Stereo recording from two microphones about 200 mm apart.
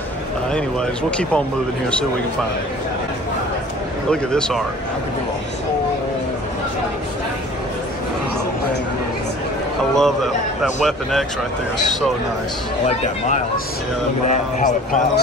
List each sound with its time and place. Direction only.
0.5 s speech: 5° left (ahead or behind)
4.1 s speech: 5° left (ahead or behind)
9.9 s speech: centre (ahead or behind)
12.8 s speech: 35° left (ahead or behind)